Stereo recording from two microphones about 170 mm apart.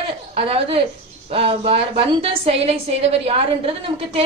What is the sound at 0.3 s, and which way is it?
A woman's voice, 35° right (ahead or behind).